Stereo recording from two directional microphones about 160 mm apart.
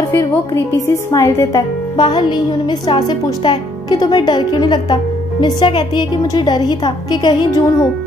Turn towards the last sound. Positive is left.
turn(degrees=25)  # may be behind; listen again after turning